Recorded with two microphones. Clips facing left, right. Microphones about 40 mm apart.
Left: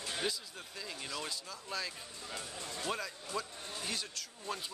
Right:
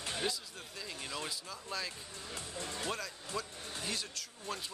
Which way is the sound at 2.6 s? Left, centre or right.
Right.